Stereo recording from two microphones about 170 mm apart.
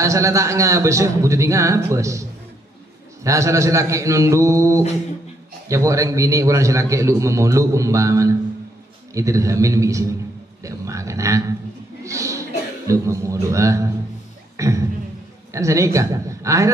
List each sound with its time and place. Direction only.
0.0 s a man's voice: 20° right (ahead or behind)
3.3 s a man's voice: 15° right (ahead or behind)